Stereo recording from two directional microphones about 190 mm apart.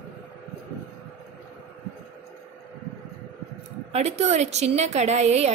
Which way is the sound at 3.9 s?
35° right (ahead or behind).